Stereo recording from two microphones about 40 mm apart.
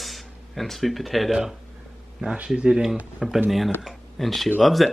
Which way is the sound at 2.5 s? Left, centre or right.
Centre.